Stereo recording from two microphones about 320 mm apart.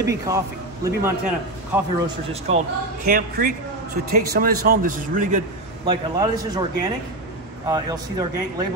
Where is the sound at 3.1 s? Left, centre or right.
Right.